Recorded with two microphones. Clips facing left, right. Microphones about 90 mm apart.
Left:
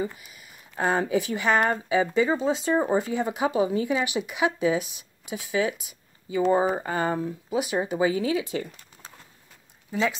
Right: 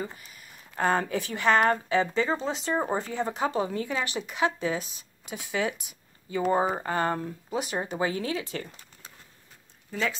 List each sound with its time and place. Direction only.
0.0 s speech: 10° left (ahead or behind)
9.8 s speech: 15° left (ahead or behind)